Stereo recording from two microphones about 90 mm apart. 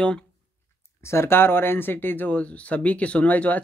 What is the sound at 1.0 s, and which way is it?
Speech, 30° left (ahead or behind).